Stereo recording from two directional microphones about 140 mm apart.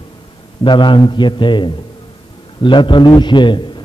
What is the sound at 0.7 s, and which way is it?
A man's voice, 35° left (ahead or behind).